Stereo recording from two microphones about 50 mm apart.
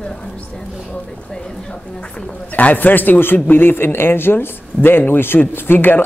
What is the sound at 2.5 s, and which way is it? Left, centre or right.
A man's voice, left.